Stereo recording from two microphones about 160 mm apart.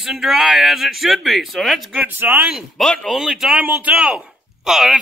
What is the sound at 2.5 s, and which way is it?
A man's voice, centre (ahead or behind).